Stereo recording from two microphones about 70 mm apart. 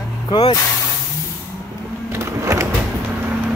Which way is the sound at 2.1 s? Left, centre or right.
Right.